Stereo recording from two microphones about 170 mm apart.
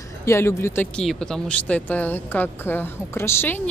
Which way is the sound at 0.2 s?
15° left (ahead or behind).